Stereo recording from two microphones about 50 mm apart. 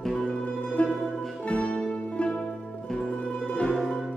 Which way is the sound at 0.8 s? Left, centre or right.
Left.